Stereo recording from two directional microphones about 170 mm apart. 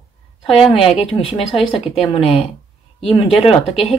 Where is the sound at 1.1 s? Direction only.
35° left (ahead or behind).